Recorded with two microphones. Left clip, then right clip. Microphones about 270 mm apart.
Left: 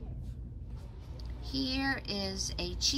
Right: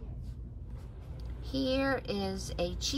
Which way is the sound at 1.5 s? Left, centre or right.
Centre.